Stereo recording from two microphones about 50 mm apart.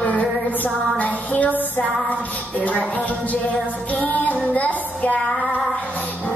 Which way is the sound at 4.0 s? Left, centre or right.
Left.